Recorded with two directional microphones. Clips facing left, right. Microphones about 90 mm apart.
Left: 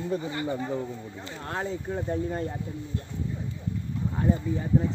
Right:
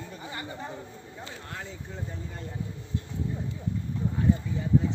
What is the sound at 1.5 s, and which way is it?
Speech, 45° left (ahead or behind).